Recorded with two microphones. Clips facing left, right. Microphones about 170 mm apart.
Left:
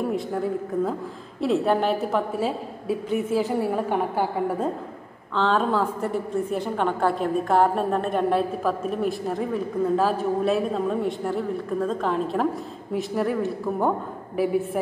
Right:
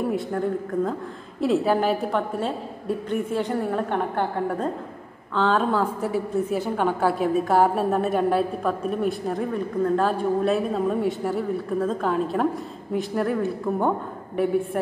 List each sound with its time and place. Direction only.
0.0 s a woman's voice: centre (ahead or behind)